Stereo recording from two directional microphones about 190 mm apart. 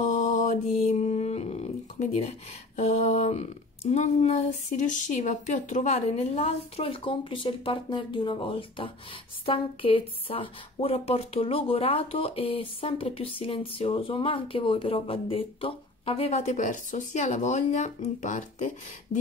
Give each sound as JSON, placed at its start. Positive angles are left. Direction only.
{"t": 0.0, "sound": "mantra", "side_deg": 40}
{"t": 2.7, "sound": "speech", "side_deg": 35}